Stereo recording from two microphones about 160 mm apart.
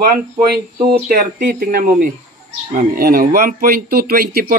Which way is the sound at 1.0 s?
60° right (ahead or behind).